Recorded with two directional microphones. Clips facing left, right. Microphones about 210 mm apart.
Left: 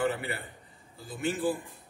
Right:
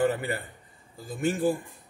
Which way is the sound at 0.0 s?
45° right (ahead or behind).